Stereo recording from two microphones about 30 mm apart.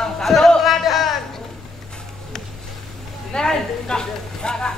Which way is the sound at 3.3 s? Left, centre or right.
Left.